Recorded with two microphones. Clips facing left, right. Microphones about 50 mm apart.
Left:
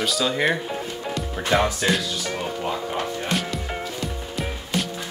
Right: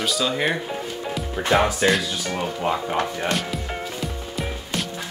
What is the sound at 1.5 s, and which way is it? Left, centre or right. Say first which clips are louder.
Speech: right 2 dB; centre.